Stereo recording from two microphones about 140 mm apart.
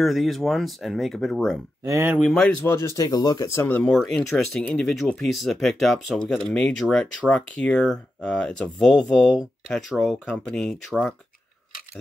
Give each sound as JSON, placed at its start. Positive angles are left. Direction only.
{"t": 0.0, "sound": "speech", "side_deg": 0}
{"t": 1.9, "sound": "speech", "side_deg": -20}
{"t": 2.1, "sound": "speech", "side_deg": 5}
{"t": 2.6, "sound": "speech", "side_deg": 20}